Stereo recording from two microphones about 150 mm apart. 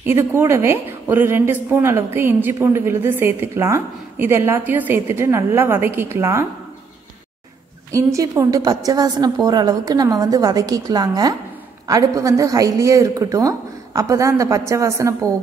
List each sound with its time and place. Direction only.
0.0 s a woman's voice: 15° right (ahead or behind)
7.9 s a woman's voice: 20° right (ahead or behind)